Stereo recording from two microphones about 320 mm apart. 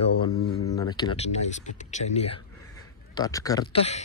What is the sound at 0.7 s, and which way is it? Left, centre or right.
Speech, centre.